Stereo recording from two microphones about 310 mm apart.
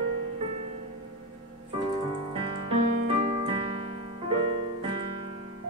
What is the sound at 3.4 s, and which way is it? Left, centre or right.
Keyboard, centre.